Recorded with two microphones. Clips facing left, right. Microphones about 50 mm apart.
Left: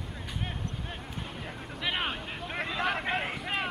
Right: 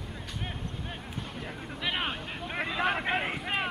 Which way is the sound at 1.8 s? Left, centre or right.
Centre.